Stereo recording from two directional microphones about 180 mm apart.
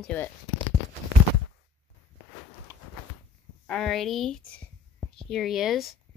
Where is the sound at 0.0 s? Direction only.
10° left (ahead or behind).